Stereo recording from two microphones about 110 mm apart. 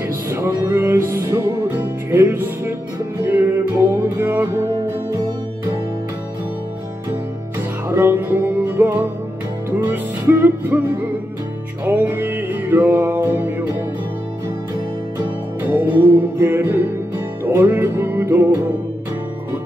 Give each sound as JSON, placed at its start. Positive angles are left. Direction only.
{"t": 0.3, "sound": "music", "side_deg": -20}
{"t": 7.9, "sound": "music", "side_deg": -20}
{"t": 11.8, "sound": "music", "side_deg": -15}
{"t": 15.7, "sound": "music", "side_deg": -15}